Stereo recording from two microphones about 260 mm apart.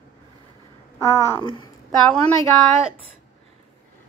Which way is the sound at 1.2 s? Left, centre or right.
Centre.